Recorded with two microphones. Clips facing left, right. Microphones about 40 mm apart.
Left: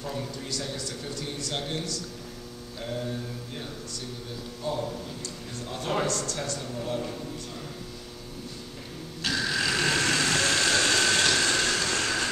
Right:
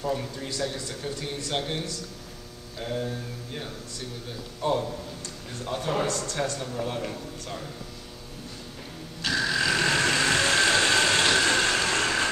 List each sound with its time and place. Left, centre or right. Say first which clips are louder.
0.0 s speech: right 4 dB; centre
2.8 s mantra: right 3 dB; centre
4.6 s a man's voice: right 5 dB; right
6.0 s speech: right 2 dB; right
9.2 s vehicle: right 2 dB; centre; by 12.3 s right